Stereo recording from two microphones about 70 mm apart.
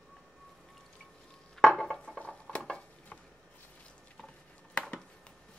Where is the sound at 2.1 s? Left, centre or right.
Centre.